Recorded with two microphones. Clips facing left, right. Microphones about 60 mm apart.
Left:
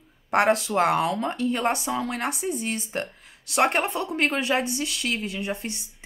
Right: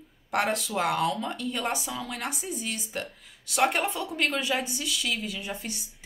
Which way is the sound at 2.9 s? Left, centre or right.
Left.